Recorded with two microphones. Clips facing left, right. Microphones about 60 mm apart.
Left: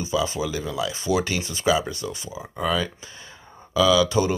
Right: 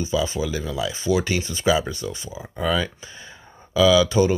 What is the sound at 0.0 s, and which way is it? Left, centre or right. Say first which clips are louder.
Speech: right 1 dB; centre.